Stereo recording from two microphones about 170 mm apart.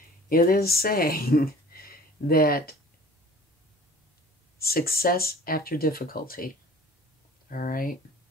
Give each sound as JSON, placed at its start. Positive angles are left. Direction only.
{"t": 0.3, "sound": "speech", "side_deg": 60}
{"t": 4.6, "sound": "speech", "side_deg": 60}